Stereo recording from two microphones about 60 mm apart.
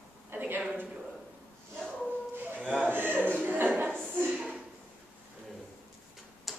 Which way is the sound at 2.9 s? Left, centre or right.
Right.